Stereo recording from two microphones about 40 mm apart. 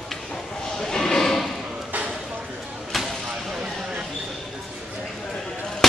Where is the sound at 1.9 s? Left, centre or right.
Right.